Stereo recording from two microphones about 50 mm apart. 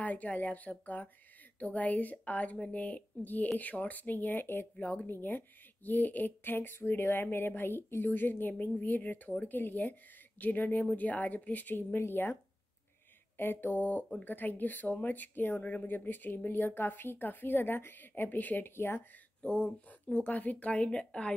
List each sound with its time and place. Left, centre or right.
0.0 s speech: left
3.1 s speech: left
4.7 s a woman's voice: left
13.4 s a woman's voice: left
18.8 s a woman's voice: left
19.4 s speech: centre
19.9 s speech: left